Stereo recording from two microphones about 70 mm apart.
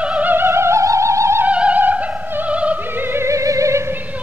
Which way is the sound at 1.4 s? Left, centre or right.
Centre.